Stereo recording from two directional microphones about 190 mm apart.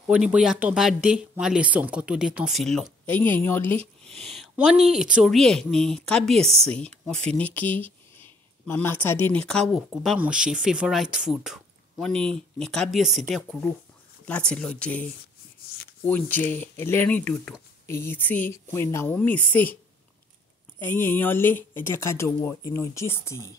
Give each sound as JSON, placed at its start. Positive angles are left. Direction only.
{"t": 0.1, "sound": "speech", "side_deg": -5}
{"t": 4.4, "sound": "speech", "side_deg": -5}
{"t": 20.8, "sound": "speech", "side_deg": 10}